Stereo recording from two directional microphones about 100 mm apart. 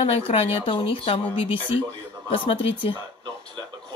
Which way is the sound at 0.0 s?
85° left.